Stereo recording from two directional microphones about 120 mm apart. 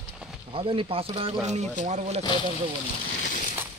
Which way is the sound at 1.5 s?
75° right (ahead or behind).